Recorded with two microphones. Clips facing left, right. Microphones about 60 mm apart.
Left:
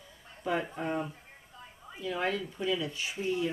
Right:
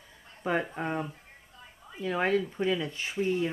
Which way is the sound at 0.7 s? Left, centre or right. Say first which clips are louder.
Right 1 dB; right.